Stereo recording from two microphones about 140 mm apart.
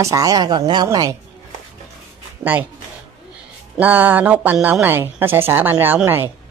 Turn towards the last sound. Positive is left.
turn(degrees=-15)  # may be behind; listen again after turning